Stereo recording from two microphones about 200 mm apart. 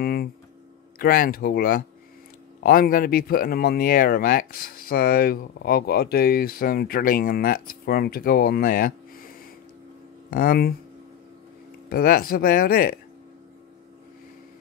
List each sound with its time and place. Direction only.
0.0 s a sound: 50° left (ahead or behind)
0.9 s speech: 45° left (ahead or behind)
11.9 s speech: 45° left (ahead or behind)